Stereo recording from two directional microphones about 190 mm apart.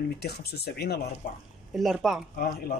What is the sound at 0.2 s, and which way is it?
Speech, 60° left (ahead or behind).